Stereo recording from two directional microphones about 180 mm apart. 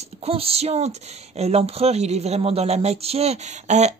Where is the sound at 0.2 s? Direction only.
35° right (ahead or behind).